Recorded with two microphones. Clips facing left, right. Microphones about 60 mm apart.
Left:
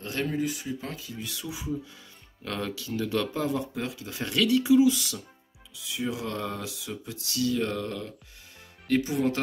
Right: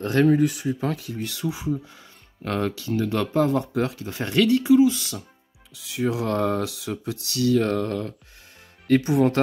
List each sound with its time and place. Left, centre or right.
0.0 s speech: right
1.1 s speech: right
1.5 s speech: right
5.8 s speech: right
6.3 s speech: right
6.6 s speech: right
6.9 s speech: right